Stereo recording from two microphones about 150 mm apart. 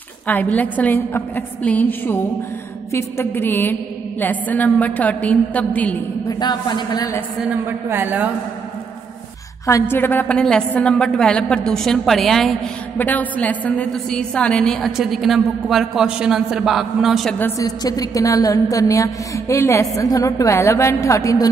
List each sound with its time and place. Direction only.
0.3 s a woman's voice: 10° left (ahead or behind)
6.2 s a woman's voice: 30° left (ahead or behind)
7.6 s a woman's voice: 15° right (ahead or behind)
9.7 s a woman's voice: 15° left (ahead or behind); by 17.4 s centre (ahead or behind)
17.4 s a woman's voice: 25° left (ahead or behind)